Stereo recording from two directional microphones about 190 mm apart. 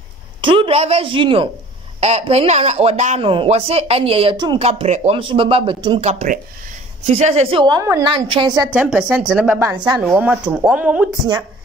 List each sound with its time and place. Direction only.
0.4 s a man's voice: 25° right (ahead or behind)
6.0 s a man's voice: 40° right (ahead or behind); by 8.7 s 20° right (ahead or behind)
8.7 s speech: 5° right (ahead or behind)